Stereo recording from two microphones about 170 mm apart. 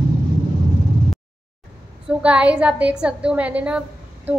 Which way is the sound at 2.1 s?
5° right (ahead or behind).